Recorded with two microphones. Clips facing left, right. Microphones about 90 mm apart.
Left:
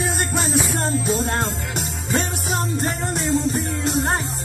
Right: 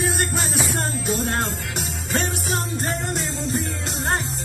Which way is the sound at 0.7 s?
20° left (ahead or behind).